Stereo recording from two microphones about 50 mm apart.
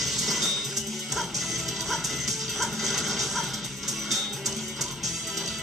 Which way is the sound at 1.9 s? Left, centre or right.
Centre.